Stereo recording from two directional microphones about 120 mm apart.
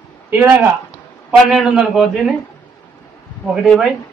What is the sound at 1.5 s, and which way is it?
Speech, 5° right (ahead or behind).